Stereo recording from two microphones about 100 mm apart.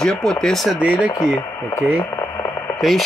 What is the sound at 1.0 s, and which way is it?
Speech, 45° left (ahead or behind).